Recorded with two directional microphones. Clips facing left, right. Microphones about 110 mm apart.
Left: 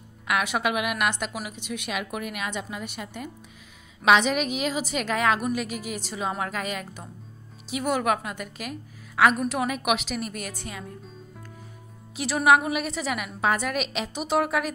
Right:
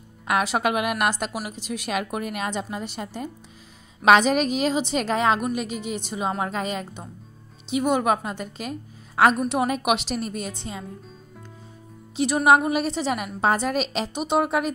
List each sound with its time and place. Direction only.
0.3 s a woman's voice: 35° right (ahead or behind)
12.4 s a woman's voice: 30° right (ahead or behind)
14.1 s a woman's voice: 20° right (ahead or behind)